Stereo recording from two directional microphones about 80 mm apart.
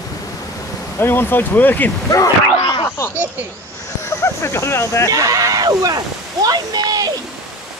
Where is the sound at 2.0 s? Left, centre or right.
Left.